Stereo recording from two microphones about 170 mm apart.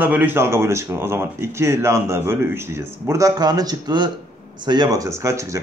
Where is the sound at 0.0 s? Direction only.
10° right (ahead or behind).